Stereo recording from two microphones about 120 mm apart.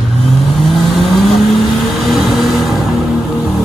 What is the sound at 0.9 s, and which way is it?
Vehicle, centre (ahead or behind).